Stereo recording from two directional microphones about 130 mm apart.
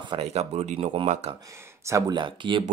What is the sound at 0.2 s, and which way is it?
Speech, 55° right (ahead or behind).